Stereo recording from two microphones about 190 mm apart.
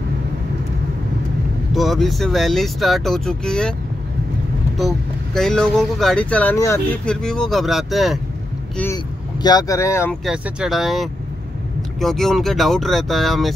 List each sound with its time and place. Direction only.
1.7 s speech: centre (ahead or behind)
4.7 s speech: centre (ahead or behind)
8.9 s speech: 20° left (ahead or behind)
10.2 s speech: 5° right (ahead or behind)